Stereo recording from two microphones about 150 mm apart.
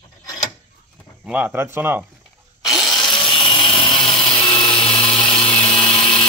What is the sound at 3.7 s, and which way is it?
Tools, 5° left (ahead or behind).